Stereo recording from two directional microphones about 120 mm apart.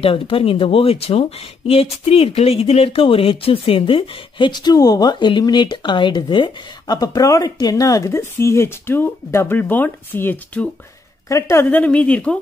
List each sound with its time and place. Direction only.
0.0 s speech: 50° left (ahead or behind); by 10.7 s 15° left (ahead or behind)
11.2 s a woman's voice: 25° left (ahead or behind)
11.8 s speech: 10° left (ahead or behind)